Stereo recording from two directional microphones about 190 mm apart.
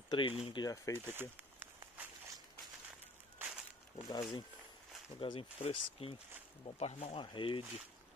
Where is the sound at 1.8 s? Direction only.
15° right (ahead or behind).